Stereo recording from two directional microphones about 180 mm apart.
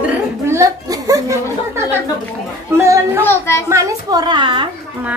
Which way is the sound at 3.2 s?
15° left (ahead or behind).